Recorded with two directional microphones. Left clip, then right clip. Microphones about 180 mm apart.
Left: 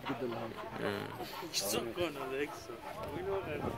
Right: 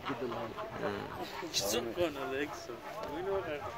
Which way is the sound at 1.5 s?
50° right (ahead or behind).